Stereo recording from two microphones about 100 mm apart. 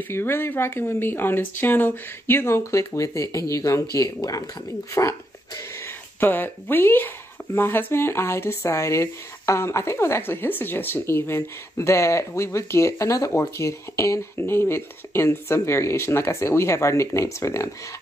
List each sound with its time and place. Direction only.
0.1 s speech: 25° left (ahead or behind)
6.1 s speech: 20° left (ahead or behind)